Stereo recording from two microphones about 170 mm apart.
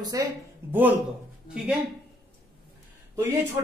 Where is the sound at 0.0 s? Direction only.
25° right (ahead or behind).